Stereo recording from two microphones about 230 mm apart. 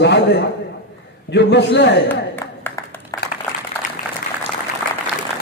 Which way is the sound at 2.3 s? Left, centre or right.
Centre.